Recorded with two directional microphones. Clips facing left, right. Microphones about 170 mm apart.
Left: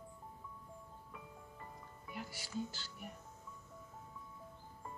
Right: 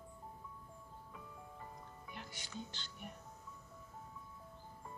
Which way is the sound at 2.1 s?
5° left (ahead or behind).